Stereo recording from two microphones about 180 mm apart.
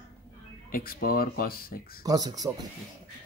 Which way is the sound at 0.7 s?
55° left (ahead or behind).